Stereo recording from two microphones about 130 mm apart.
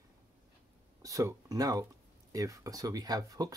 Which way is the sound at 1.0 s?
25° right (ahead or behind).